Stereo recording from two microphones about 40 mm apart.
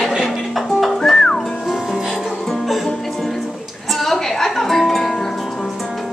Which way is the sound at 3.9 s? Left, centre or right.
Centre.